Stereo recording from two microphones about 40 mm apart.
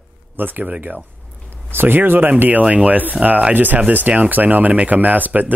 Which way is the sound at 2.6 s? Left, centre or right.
Right.